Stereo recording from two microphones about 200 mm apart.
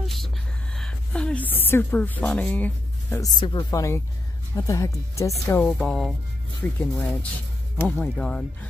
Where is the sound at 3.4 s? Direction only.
20° left (ahead or behind).